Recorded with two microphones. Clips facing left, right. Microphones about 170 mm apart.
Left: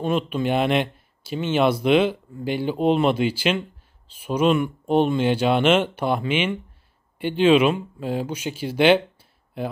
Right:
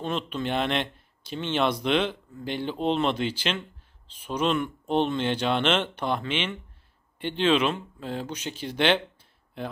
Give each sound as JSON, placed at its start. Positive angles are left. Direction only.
{"t": 0.0, "sound": "speech", "side_deg": 10}